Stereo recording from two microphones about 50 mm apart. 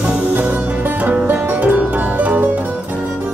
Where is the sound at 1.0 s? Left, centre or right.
Right.